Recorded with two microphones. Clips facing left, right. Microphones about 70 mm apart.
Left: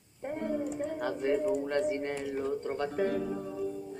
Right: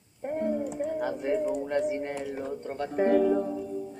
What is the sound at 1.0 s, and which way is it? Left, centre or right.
Speech, centre.